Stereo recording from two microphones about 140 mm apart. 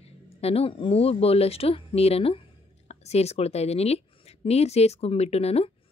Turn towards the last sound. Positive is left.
turn(degrees=45)  # may be behind; listen again after turning